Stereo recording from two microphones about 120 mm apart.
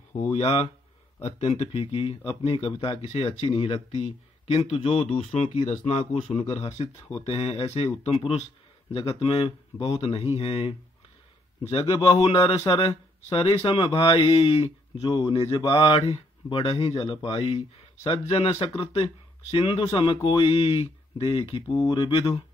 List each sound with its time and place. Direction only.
0.3 s speech: 55° left (ahead or behind)
7.2 s speech: 55° left (ahead or behind)
15.0 s speech: 35° left (ahead or behind)
15.3 s speech: 45° left (ahead or behind)
17.3 s speech: 55° left (ahead or behind); by 22.3 s 40° left (ahead or behind)